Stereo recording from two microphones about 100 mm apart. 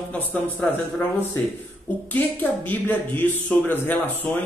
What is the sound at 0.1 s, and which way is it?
A woman's voice, 15° left (ahead or behind).